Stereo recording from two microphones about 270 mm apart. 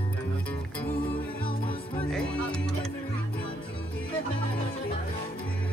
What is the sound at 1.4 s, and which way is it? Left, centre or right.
Music, centre.